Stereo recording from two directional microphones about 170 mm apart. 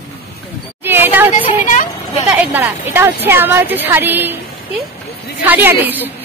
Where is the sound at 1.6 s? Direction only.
45° left (ahead or behind).